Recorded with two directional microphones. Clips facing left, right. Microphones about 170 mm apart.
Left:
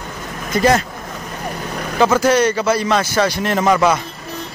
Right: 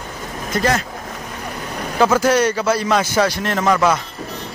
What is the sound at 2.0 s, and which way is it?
Speech, 5° right (ahead or behind).